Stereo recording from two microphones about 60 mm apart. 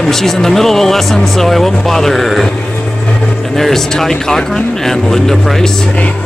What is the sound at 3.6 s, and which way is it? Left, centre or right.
Speech, centre.